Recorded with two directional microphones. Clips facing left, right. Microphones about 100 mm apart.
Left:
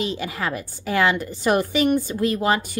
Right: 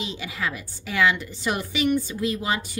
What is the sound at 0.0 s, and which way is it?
A woman's voice, 50° left (ahead or behind).